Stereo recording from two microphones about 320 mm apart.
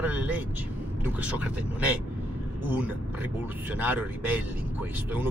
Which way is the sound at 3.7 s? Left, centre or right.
Centre.